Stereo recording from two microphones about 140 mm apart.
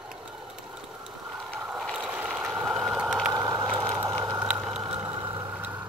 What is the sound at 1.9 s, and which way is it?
Vehicle, 10° right (ahead or behind).